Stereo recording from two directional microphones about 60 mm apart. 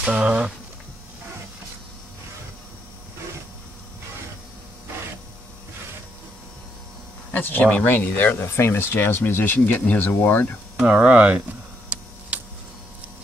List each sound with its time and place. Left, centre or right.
0.1 s speech: centre
7.3 s speech: left
10.0 s speech: left
11.0 s a sound: right